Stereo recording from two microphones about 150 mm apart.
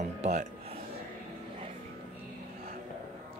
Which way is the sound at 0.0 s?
50° right (ahead or behind).